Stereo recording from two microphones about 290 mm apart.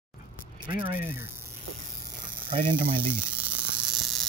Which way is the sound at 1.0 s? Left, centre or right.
Centre.